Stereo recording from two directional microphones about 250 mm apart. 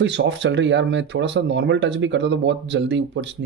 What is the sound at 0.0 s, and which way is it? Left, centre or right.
Speech, right.